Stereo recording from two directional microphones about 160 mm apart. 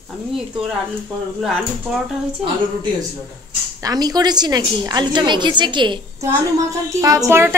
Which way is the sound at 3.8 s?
25° right (ahead or behind).